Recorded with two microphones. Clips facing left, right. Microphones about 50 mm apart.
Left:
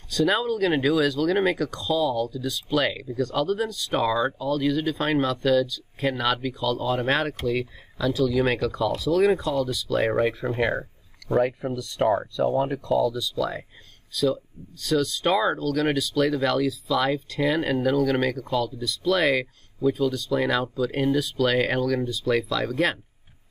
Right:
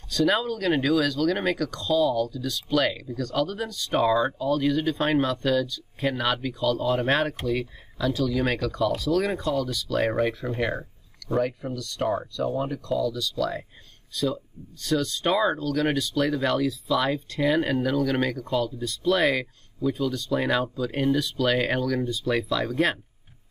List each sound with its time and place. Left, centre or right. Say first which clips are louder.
0.1 s speech: left 1 dB; centre
10.5 s a sound: left 3 dB; centre
11.4 s speech: left 3 dB; left
12.4 s speech: left 4 dB; left
13.0 s speech: left 2 dB; centre
14.1 s speech: left 3 dB; centre